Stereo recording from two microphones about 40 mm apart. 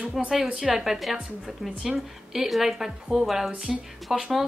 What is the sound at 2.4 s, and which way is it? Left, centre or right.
A woman's voice, centre.